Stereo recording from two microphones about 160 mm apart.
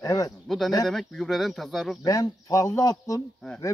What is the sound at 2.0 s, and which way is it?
A man's voice, 20° left (ahead or behind).